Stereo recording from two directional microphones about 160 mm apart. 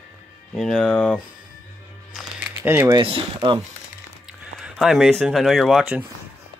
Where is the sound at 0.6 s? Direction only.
Centre (ahead or behind).